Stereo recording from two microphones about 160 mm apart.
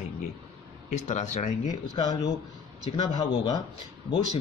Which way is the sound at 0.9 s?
45° left (ahead or behind).